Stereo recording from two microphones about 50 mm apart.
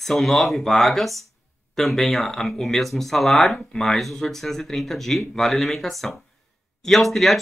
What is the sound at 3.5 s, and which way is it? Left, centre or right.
Speech, centre.